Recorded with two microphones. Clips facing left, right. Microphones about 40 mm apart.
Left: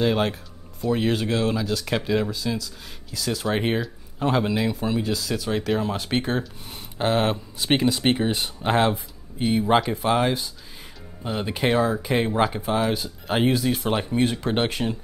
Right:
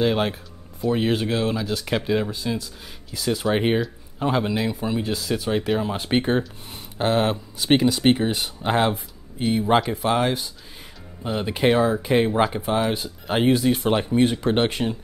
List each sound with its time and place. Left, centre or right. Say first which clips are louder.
0.0 s speech: right 1 dB; centre
2.3 s speech: right 1 dB; right
3.1 s speech: right 3 dB; centre
3.8 s speech: right 1 dB; centre
5.1 s speech: right 2 dB; centre
5.7 s speech: left 1 dB; centre
5.9 s speech: right 3 dB; right
6.4 s speech: even; centre